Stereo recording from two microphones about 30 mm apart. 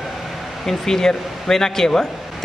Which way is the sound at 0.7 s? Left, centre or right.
Centre.